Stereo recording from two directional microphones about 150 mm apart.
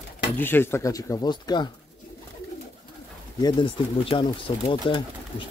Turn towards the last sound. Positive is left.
turn(degrees=35)  # may be behind; listen again after turning